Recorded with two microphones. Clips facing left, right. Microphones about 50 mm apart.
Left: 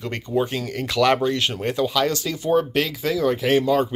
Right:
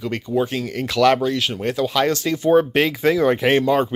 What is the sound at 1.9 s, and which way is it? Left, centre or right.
Speech, centre.